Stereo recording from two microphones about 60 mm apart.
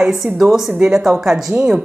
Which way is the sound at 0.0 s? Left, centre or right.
Centre.